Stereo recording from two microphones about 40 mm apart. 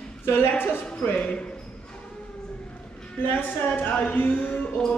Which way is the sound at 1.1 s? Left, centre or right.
Left.